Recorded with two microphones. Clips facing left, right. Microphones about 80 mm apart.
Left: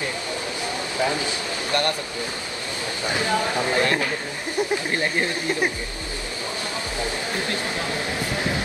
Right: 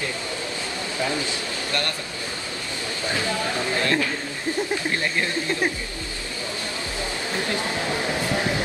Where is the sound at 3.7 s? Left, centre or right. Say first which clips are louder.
Even; left.